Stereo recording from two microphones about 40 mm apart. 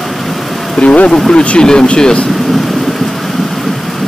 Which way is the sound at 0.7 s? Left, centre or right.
Left.